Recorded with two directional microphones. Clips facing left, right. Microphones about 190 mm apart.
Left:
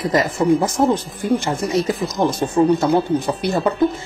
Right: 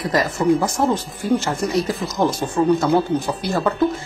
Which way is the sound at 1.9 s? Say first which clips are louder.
Left 1 dB; centre (ahead or behind).